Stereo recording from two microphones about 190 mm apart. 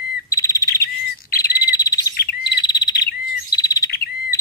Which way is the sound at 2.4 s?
20° left (ahead or behind).